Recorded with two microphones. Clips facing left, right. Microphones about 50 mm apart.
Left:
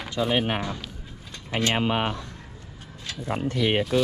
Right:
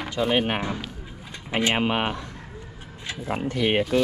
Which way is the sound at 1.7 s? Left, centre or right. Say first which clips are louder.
Right 1 dB; right.